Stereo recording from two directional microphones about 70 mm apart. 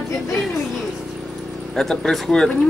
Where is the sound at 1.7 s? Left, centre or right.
Centre.